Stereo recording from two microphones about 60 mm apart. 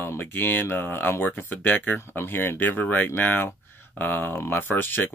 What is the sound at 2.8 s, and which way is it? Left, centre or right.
Speech, left.